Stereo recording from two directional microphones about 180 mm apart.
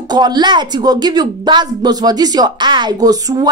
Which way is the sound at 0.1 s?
25° right (ahead or behind).